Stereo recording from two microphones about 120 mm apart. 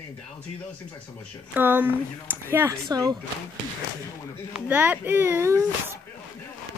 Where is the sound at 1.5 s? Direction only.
15° right (ahead or behind).